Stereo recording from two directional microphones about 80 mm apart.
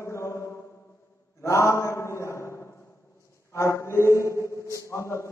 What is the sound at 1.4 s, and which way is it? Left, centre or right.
A man's voice, left.